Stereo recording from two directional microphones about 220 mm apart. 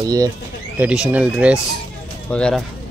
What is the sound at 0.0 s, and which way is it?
Speech, 15° right (ahead or behind).